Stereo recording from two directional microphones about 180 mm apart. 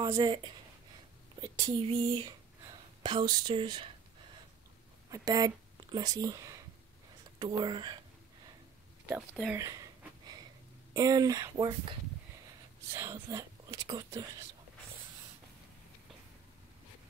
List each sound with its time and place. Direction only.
0.0 s speech: 20° right (ahead or behind)
5.1 s speech: 20° right (ahead or behind)
9.0 s speech: 5° right (ahead or behind)
9.6 s a sound: 20° right (ahead or behind)
10.9 s speech: 20° right (ahead or behind)
12.9 s speech: 20° right (ahead or behind)